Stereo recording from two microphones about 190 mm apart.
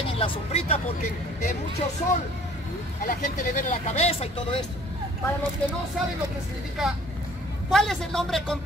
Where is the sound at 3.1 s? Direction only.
45° left (ahead or behind).